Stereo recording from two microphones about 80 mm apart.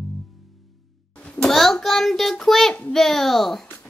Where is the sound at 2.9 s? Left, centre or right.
Centre.